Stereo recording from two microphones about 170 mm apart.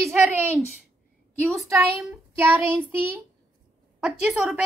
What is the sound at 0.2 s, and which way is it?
Speech, 10° right (ahead or behind).